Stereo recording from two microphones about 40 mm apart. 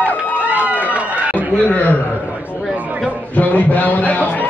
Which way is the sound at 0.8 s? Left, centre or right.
Right.